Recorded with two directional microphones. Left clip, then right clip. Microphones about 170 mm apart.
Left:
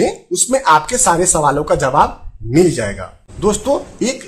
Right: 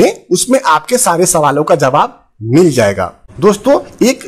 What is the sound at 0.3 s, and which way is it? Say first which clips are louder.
Speech: right 2 dB; 30° right (ahead or behind).